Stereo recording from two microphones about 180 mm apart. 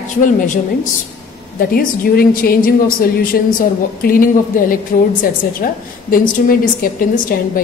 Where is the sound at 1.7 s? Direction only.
55° left (ahead or behind).